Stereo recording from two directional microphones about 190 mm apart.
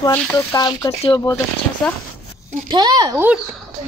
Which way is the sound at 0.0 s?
10° left (ahead or behind).